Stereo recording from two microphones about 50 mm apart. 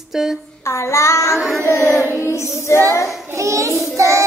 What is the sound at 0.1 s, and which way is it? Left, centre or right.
Speech, centre.